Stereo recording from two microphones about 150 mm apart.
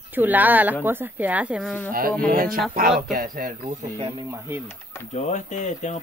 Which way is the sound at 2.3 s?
70° right (ahead or behind).